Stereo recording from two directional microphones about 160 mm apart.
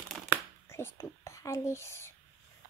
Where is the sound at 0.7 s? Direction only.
15° left (ahead or behind).